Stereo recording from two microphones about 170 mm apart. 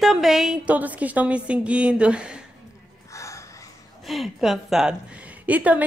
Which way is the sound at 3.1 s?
20° left (ahead or behind).